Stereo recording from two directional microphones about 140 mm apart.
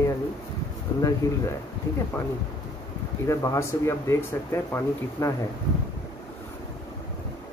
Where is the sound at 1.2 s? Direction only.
20° left (ahead or behind).